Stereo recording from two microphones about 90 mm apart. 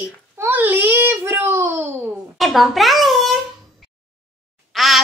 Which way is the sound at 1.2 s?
30° right (ahead or behind).